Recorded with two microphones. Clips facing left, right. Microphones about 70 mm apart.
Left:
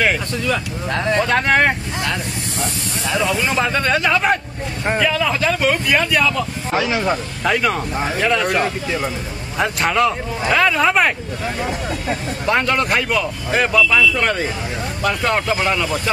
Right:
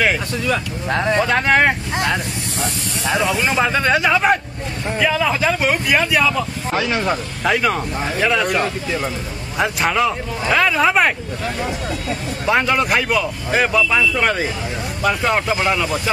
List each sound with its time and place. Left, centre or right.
0.8 s speech: centre
1.2 s speech: centre